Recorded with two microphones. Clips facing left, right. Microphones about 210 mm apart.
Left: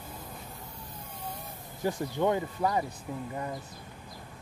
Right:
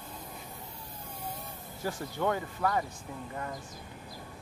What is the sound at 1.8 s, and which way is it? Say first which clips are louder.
Speech: left 4 dB; 20° left (ahead or behind).